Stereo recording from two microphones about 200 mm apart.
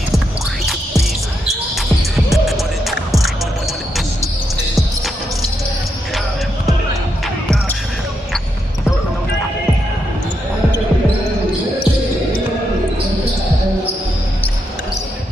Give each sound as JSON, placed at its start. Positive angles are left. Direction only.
{"t": 2.3, "sound": "music", "side_deg": 0}